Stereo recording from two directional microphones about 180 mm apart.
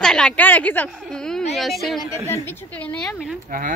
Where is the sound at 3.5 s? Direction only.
50° right (ahead or behind).